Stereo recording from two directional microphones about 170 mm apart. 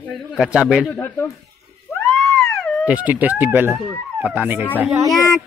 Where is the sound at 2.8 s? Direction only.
10° right (ahead or behind).